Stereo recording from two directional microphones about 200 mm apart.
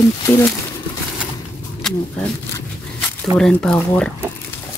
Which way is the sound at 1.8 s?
5° left (ahead or behind).